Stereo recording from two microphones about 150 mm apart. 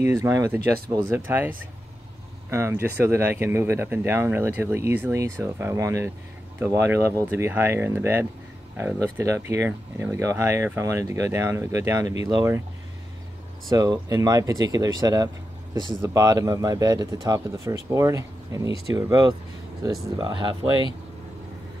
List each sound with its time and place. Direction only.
0.0 s speech: 20° right (ahead or behind)
2.5 s speech: 15° right (ahead or behind)
13.7 s speech: 25° right (ahead or behind)